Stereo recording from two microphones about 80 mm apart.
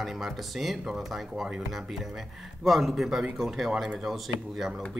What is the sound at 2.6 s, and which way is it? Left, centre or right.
Speech, centre.